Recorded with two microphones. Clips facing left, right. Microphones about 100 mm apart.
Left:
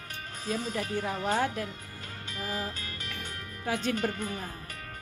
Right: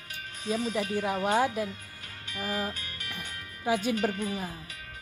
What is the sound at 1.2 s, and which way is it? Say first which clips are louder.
Speech: right 3 dB; 15° right (ahead or behind).